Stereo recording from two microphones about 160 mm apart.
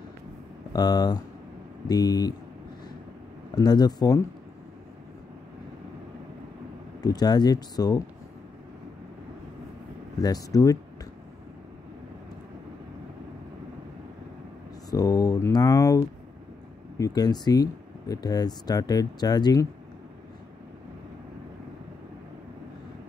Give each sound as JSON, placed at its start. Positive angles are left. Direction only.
{"t": 0.7, "sound": "speech", "side_deg": 25}
{"t": 3.5, "sound": "speech", "side_deg": 25}
{"t": 7.0, "sound": "speech", "side_deg": 25}
{"t": 10.2, "sound": "speech", "side_deg": 20}
{"t": 14.9, "sound": "speech", "side_deg": 20}
{"t": 17.0, "sound": "speech", "side_deg": 25}